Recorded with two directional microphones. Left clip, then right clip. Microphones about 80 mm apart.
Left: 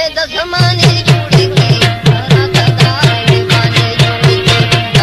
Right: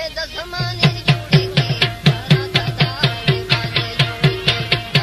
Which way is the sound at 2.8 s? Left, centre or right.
Left.